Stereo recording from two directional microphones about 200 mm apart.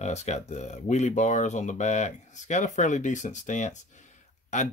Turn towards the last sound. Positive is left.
turn(degrees=35)  # may be behind; listen again after turning